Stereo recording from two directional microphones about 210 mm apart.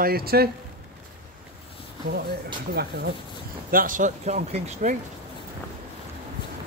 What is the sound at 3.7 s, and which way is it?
Speech, 40° right (ahead or behind).